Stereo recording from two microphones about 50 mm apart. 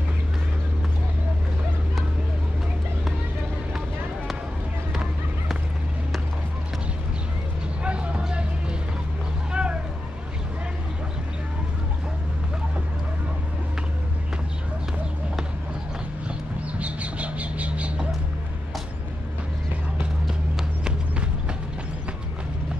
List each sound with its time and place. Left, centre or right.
7.8 s a sound: right
8.2 s music: centre
9.5 s vehicle: right
16.3 s bird: right